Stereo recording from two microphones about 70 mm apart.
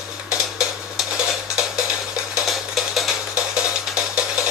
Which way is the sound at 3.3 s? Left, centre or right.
Centre.